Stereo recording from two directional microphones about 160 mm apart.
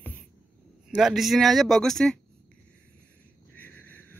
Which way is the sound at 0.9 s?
5° right (ahead or behind).